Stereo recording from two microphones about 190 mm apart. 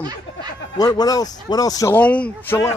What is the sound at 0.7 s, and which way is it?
Speech, 20° left (ahead or behind).